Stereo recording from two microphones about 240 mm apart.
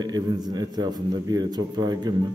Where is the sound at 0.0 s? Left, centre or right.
Centre.